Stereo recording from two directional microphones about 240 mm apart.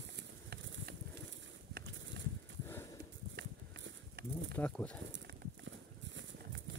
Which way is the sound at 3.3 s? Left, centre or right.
Right.